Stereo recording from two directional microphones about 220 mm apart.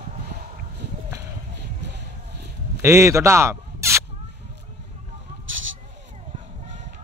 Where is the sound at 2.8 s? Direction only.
10° right (ahead or behind).